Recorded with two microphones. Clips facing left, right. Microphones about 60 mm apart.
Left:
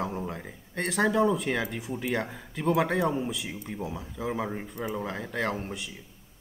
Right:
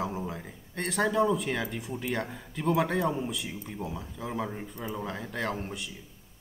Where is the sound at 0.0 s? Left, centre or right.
Centre.